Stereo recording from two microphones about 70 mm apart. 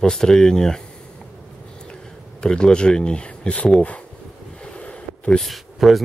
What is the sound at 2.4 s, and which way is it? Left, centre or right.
Speech, centre.